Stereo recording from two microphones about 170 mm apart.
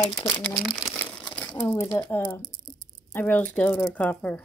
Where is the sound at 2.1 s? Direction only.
15° left (ahead or behind).